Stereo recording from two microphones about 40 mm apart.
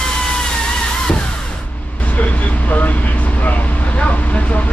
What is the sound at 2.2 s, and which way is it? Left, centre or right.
Vehicle, left.